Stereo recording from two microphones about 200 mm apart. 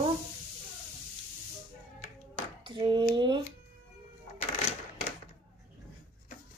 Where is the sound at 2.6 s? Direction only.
25° right (ahead or behind).